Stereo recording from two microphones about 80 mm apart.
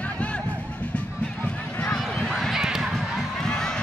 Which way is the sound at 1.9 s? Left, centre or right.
Centre.